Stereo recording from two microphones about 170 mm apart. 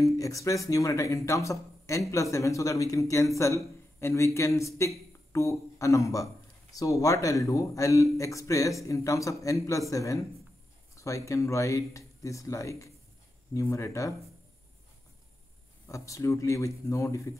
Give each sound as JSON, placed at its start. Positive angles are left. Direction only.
{"t": 0.0, "sound": "a man's voice", "side_deg": 20}
{"t": 15.9, "sound": "speech", "side_deg": 20}